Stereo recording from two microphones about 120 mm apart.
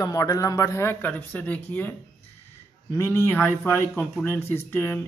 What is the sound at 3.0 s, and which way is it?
A man's voice, 20° left (ahead or behind).